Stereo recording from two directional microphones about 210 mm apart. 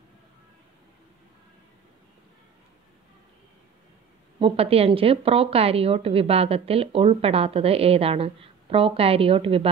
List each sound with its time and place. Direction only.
4.4 s a woman's voice: 25° right (ahead or behind)